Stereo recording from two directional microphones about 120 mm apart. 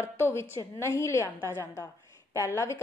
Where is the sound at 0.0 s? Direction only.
20° left (ahead or behind).